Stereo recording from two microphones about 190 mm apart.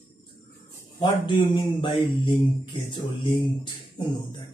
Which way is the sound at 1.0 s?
25° left (ahead or behind).